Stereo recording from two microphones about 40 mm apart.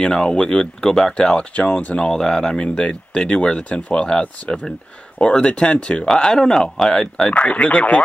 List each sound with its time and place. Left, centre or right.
0.0 s speech: left
2.0 s speech: centre
7.3 s speech: left